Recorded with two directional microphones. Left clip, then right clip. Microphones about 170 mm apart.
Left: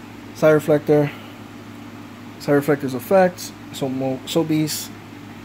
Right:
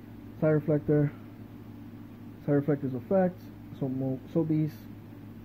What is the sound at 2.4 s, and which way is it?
Speech, 10° left (ahead or behind).